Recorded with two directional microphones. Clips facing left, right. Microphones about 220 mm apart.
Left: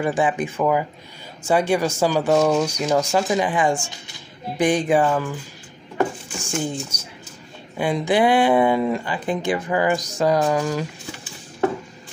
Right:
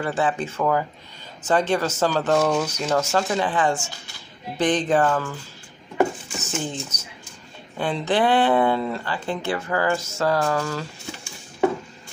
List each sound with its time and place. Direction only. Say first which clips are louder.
0.0 s speech: left 3 dB; 15° left (ahead or behind)